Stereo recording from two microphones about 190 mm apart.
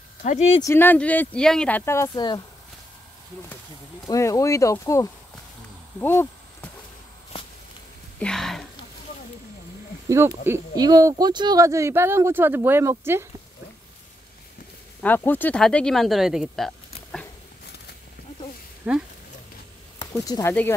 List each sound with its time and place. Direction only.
0.2 s speech: 35° left (ahead or behind)
0.6 s speech: 15° left (ahead or behind)
4.1 s speech: 15° left (ahead or behind)
5.9 s a sound: 10° left (ahead or behind)
8.2 s speech: 5° left (ahead or behind)
10.0 s speech: 15° right (ahead or behind)
15.0 s speech: 10° left (ahead or behind)
18.9 s speech: 5° right (ahead or behind)
20.0 s speech: 20° left (ahead or behind)